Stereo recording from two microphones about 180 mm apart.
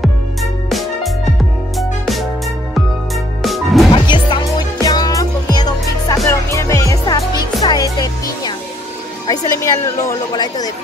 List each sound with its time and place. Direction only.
0.0 s music: centre (ahead or behind)
3.4 s music: centre (ahead or behind)
3.9 s music: 25° left (ahead or behind)
9.3 s a woman's voice: 20° left (ahead or behind)